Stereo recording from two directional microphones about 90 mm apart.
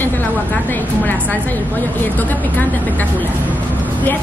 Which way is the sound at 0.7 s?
20° left (ahead or behind).